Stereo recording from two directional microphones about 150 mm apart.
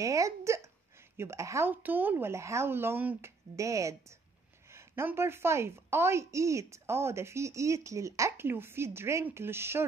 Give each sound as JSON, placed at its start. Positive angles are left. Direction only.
{"t": 0.0, "sound": "a woman's voice", "side_deg": -20}